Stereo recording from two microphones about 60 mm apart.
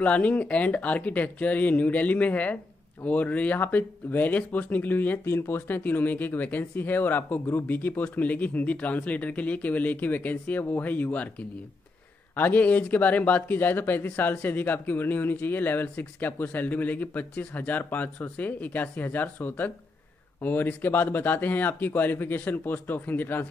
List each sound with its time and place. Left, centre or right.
0.0 s speech: left
5.2 s speech: left
5.7 s speech: left
12.4 s speech: left